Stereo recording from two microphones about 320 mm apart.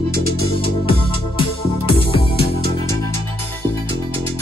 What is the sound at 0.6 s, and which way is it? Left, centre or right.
Music, centre.